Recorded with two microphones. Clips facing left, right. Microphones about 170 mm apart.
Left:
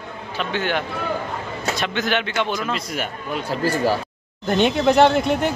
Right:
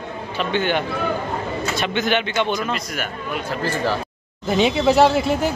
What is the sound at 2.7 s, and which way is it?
Speech, 25° left (ahead or behind).